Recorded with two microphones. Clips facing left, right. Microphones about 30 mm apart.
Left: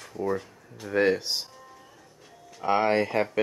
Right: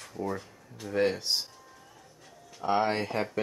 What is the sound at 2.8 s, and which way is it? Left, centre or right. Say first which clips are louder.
Speech: left 5 dB; centre.